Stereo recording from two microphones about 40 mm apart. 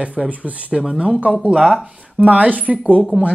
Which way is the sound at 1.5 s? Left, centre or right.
Centre.